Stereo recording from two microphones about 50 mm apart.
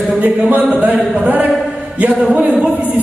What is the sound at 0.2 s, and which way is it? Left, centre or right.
Speech, right.